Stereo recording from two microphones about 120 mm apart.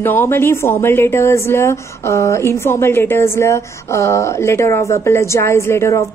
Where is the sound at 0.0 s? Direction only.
20° left (ahead or behind).